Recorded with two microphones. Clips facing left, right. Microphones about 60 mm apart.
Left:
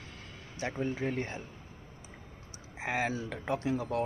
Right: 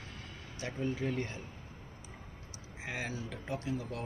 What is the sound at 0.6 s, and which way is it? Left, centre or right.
Speech, left.